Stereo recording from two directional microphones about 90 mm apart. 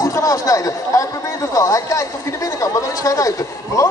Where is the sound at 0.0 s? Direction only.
40° left (ahead or behind).